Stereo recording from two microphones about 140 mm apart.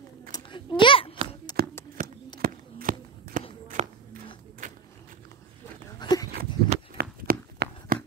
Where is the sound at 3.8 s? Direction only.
55° right (ahead or behind).